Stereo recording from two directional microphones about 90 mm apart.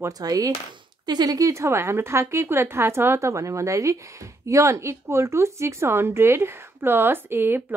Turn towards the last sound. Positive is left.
turn(degrees=-25)  # may be behind; listen again after turning